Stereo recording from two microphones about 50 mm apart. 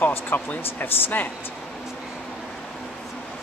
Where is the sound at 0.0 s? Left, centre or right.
Left.